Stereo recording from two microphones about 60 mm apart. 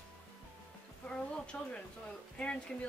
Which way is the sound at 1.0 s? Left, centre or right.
Centre.